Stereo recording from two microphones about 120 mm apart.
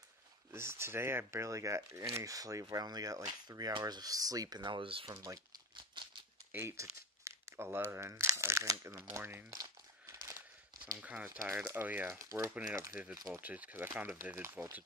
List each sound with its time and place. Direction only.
0.5 s speech: 20° right (ahead or behind); by 5.2 s 45° right (ahead or behind)
6.0 s a sound: 40° right (ahead or behind)
6.5 s crumpling: 25° right (ahead or behind)
7.9 s speech: 20° right (ahead or behind)
9.5 s crumpling: 30° right (ahead or behind)
11.0 s speech: 10° right (ahead or behind)
12.9 s speech: 10° right (ahead or behind)